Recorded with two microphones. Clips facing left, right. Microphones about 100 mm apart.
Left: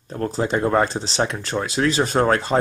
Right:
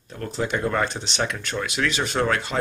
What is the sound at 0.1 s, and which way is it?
Speech, 35° left (ahead or behind).